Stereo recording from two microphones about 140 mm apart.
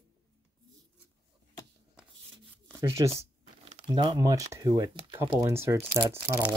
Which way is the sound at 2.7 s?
20° right (ahead or behind).